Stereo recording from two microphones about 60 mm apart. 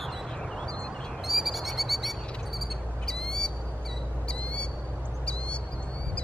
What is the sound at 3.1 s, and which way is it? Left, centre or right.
Bird, centre.